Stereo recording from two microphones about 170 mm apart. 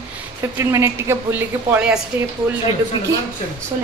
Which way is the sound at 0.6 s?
15° right (ahead or behind).